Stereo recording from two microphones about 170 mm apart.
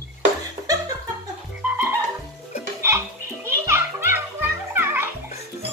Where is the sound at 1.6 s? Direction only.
15° right (ahead or behind).